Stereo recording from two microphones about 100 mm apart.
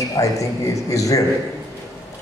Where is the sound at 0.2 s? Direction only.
35° left (ahead or behind).